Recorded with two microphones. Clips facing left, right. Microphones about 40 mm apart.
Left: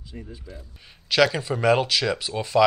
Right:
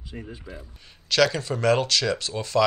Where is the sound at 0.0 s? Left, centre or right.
Right.